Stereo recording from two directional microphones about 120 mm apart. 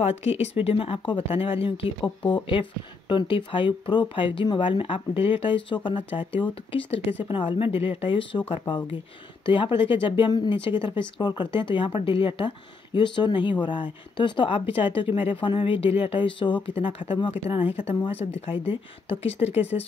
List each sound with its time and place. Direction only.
0.0 s speech: 60° left (ahead or behind)
2.2 s speech: 40° left (ahead or behind)